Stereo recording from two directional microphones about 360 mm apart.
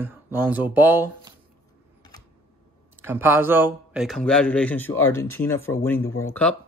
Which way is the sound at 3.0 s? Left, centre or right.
Centre.